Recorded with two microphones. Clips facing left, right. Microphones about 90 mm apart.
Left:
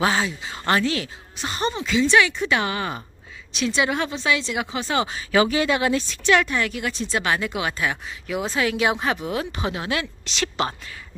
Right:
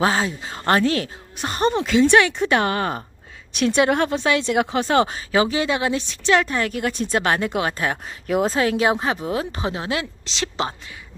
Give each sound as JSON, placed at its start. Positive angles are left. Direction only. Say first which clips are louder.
{"t": 0.0, "sound": "speech", "louder": "right 2 dB", "side_deg": -40}
{"t": 5.3, "sound": "a woman's voice", "louder": "left 2 dB", "side_deg": -25}
{"t": 6.3, "sound": "a woman's voice", "louder": "right 1 dB", "side_deg": -35}